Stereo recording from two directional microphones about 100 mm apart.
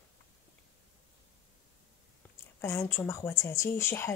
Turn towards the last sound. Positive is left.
turn(degrees=25)  # may be behind; listen again after turning